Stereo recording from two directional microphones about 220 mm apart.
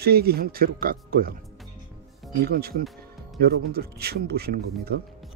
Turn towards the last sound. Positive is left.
turn(degrees=-45)  # may be behind; listen again after turning